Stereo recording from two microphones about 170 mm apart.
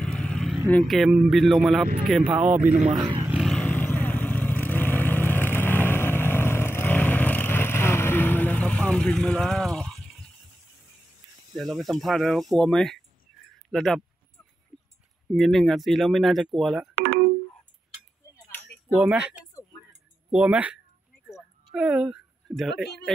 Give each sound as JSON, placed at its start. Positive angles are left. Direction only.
{"t": 0.0, "sound": "vehicle", "side_deg": 5}
{"t": 0.7, "sound": "speech", "side_deg": 5}
{"t": 3.2, "sound": "vehicle", "side_deg": -10}
{"t": 3.4, "sound": "vehicle", "side_deg": 5}
{"t": 11.5, "sound": "speech", "side_deg": 0}
{"t": 15.3, "sound": "speech", "side_deg": 0}
{"t": 16.9, "sound": "telephone dialing", "side_deg": -60}
{"t": 18.3, "sound": "a sound", "side_deg": 10}
{"t": 18.9, "sound": "speech", "side_deg": -5}
{"t": 19.9, "sound": "a sound", "side_deg": -5}
{"t": 21.7, "sound": "speech", "side_deg": -5}